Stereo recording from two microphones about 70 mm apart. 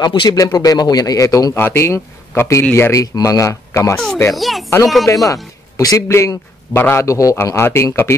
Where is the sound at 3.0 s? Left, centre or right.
Left.